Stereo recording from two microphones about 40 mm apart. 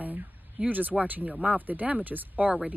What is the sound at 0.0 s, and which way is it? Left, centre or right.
A woman's voice, right.